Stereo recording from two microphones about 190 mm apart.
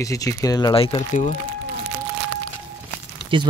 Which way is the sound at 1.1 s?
40° left (ahead or behind).